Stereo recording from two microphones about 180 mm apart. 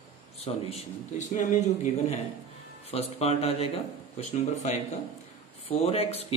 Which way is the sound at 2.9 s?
35° left (ahead or behind).